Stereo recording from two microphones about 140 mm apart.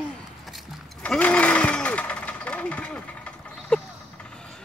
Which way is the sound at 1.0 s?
10° left (ahead or behind).